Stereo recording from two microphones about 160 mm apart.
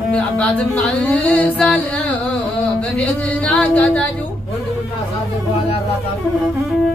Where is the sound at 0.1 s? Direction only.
5° left (ahead or behind).